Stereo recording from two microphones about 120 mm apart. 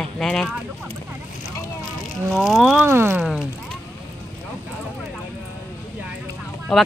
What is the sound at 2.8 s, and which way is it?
Speech, 20° right (ahead or behind).